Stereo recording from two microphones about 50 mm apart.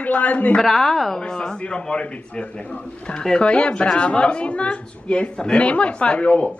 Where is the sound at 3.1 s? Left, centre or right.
Centre.